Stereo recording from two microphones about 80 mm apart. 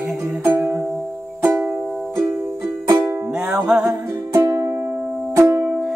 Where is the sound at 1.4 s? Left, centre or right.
Centre.